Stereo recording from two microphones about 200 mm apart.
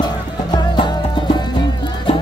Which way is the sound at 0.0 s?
20° left (ahead or behind).